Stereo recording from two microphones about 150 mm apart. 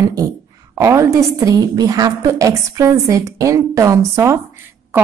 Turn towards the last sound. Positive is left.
turn(degrees=-20)  # may be behind; listen again after turning